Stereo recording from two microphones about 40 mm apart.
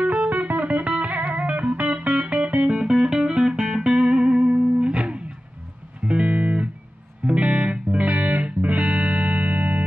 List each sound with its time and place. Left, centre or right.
0.0 s music: right
2.7 s music: right